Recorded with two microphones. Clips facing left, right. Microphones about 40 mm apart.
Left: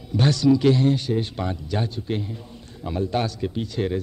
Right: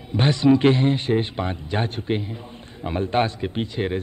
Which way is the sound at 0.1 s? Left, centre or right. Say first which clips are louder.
Right 1 dB; right.